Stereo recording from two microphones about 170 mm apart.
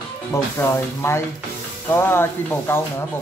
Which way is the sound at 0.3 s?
15° left (ahead or behind).